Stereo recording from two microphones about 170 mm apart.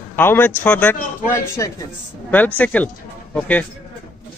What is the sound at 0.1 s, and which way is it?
A woman's voice, 10° left (ahead or behind).